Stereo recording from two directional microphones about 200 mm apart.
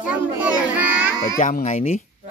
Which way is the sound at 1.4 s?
40° left (ahead or behind).